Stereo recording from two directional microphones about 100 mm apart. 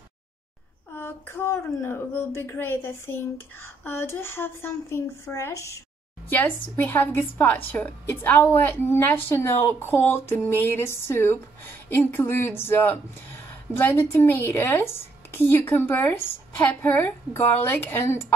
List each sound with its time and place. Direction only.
0.9 s a woman's voice: 20° left (ahead or behind)
6.2 s a woman's voice: 20° left (ahead or behind)